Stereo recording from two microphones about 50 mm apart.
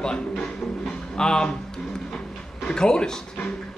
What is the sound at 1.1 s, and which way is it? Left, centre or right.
Speech, centre.